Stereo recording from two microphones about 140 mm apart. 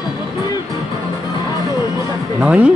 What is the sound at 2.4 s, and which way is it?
Speech, 10° right (ahead or behind).